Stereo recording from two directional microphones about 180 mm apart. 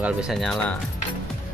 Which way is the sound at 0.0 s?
5° right (ahead or behind).